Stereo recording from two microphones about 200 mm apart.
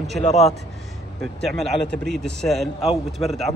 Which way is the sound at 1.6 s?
Centre (ahead or behind).